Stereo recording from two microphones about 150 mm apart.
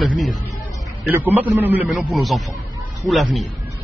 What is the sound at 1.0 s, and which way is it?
Speech, 10° right (ahead or behind).